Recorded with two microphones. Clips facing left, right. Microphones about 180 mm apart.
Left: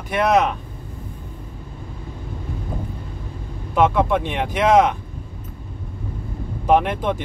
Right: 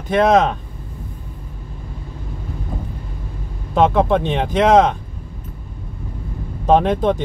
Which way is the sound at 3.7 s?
25° right (ahead or behind).